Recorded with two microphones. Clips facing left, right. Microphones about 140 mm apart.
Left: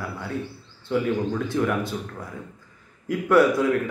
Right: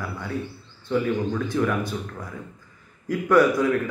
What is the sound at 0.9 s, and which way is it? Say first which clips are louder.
A man's voice: even; 20° left (ahead or behind).